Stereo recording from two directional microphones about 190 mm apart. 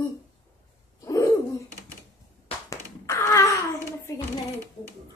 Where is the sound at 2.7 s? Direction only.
15° left (ahead or behind).